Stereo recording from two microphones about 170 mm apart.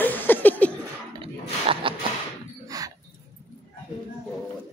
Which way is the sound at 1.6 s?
30° right (ahead or behind).